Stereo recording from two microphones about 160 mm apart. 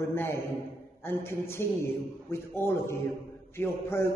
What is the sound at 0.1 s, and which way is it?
A man's voice, 15° left (ahead or behind).